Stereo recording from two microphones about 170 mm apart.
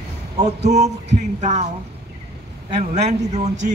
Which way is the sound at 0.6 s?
45° right (ahead or behind).